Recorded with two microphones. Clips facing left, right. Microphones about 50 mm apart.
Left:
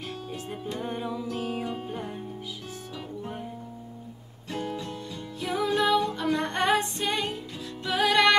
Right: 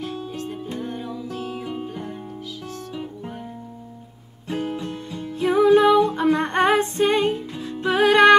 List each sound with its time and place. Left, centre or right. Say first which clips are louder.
0.7 s music: right 2 dB; centre
2.9 s music: right 2 dB; centre
4.5 s music: right 6 dB; right